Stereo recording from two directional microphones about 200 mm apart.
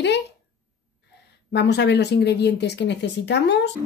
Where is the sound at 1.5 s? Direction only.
60° left (ahead or behind).